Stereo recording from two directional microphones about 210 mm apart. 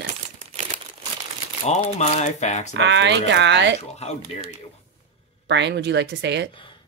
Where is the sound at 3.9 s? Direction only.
30° left (ahead or behind).